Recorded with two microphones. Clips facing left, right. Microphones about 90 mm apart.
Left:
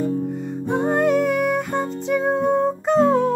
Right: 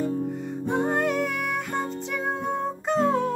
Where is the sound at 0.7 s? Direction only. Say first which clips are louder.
Left 5 dB; 25° left (ahead or behind).